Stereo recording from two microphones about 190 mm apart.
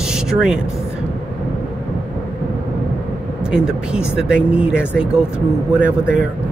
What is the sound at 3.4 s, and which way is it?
Speech, 5° right (ahead or behind).